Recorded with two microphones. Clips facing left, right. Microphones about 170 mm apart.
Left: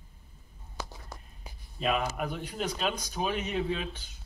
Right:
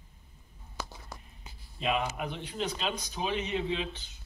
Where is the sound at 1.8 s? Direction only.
45° left (ahead or behind).